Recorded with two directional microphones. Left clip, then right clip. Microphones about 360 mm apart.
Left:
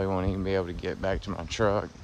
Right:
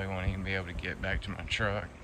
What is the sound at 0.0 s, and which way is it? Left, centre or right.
Speech, centre.